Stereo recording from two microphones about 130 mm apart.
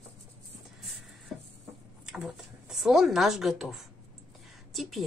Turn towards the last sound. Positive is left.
turn(degrees=0)  # may be behind; listen again after turning